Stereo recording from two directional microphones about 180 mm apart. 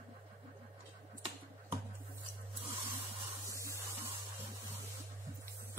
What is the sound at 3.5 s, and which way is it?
Spray, 15° right (ahead or behind).